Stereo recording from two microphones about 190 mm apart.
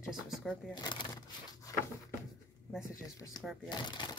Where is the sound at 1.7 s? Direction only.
20° left (ahead or behind).